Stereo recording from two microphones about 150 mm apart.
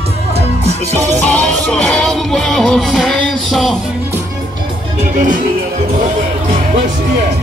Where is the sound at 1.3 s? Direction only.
5° left (ahead or behind).